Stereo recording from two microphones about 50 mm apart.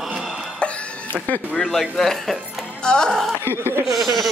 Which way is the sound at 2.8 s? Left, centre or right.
Centre.